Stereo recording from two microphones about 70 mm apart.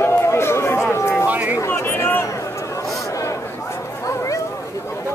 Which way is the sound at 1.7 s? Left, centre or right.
Left.